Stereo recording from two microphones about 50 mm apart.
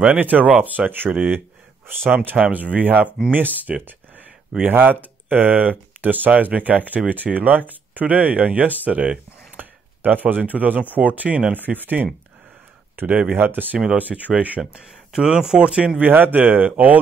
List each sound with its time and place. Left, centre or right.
0.0 s speech: right
10.0 s speech: right
14.7 s speech: centre
16.0 s speech: right